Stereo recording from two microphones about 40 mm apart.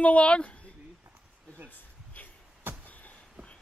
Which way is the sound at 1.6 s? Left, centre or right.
Left.